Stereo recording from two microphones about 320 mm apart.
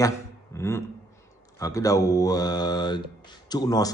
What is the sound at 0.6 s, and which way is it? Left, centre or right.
A man's voice, centre.